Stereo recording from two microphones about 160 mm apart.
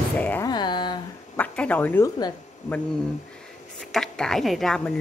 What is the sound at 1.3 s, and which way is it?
Speech, 10° left (ahead or behind).